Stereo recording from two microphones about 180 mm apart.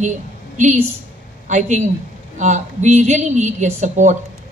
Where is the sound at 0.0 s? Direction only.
40° right (ahead or behind).